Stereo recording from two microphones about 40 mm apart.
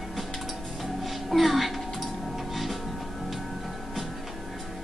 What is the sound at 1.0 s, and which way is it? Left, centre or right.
Music, centre.